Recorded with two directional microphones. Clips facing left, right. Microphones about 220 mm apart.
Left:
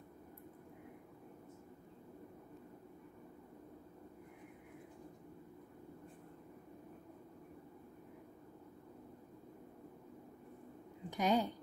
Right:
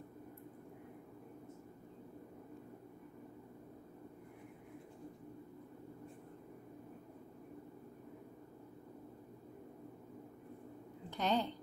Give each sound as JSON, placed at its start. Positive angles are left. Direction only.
{"t": 11.1, "sound": "a woman's voice", "side_deg": 10}